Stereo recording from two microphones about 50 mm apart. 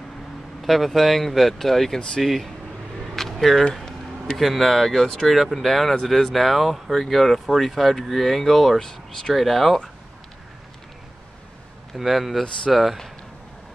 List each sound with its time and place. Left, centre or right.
0.6 s speech: centre
2.2 s speech: centre
3.0 s vehicle: centre
3.7 s a sound: centre
4.4 s speech: centre
11.9 s speech: centre